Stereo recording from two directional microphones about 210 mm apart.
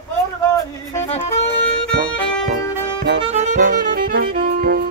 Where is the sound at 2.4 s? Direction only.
40° right (ahead or behind).